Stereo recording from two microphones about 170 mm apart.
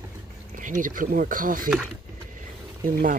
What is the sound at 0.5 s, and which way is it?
Speech, 50° right (ahead or behind).